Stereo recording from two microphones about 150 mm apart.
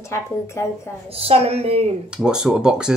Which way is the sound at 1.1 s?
40° right (ahead or behind).